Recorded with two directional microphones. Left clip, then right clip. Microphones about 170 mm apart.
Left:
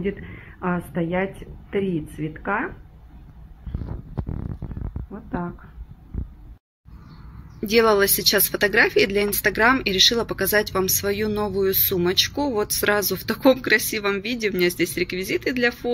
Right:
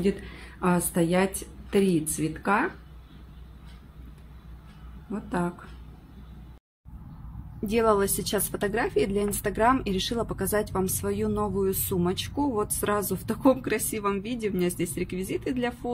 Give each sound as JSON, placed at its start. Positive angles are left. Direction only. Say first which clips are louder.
{"t": 0.6, "sound": "a woman's voice", "louder": "right 1 dB", "side_deg": -20}
{"t": 5.1, "sound": "a woman's voice", "louder": "right 1 dB", "side_deg": -20}
{"t": 7.6, "sound": "a woman's voice", "louder": "left 6 dB", "side_deg": 0}